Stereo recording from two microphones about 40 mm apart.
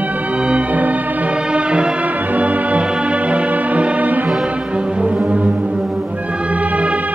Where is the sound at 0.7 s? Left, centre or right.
Right.